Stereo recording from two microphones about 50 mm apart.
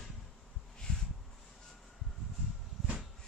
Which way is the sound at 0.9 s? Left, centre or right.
Centre.